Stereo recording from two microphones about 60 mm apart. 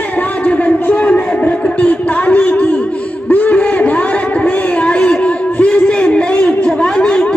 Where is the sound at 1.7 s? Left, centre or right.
Left.